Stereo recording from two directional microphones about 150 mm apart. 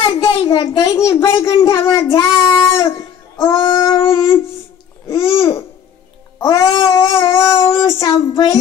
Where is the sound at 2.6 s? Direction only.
20° left (ahead or behind).